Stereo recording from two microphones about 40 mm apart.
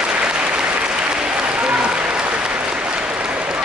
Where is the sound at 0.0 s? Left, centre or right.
Right.